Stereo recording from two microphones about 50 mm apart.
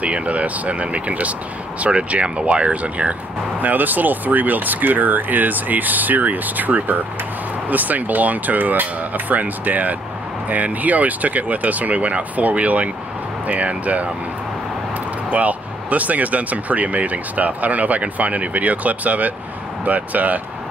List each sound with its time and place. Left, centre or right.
0.0 s speech: right
15.2 s speech: right